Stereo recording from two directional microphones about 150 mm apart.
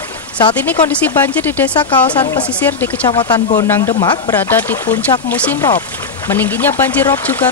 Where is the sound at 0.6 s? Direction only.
15° left (ahead or behind).